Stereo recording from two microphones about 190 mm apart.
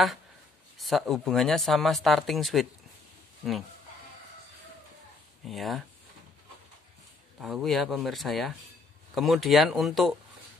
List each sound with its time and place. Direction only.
0.7 s speech: centre (ahead or behind)
5.4 s speech: centre (ahead or behind)
7.3 s speech: centre (ahead or behind)